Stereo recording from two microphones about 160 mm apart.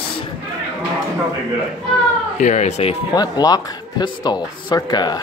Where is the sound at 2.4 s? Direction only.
45° left (ahead or behind).